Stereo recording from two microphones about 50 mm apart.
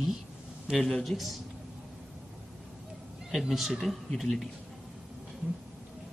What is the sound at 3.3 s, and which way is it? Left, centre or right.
Speech, centre.